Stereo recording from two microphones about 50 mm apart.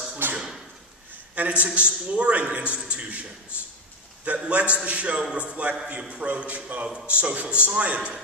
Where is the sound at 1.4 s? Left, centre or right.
Right.